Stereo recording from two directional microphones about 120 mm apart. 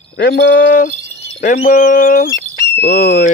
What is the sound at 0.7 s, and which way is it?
Speech, 90° left.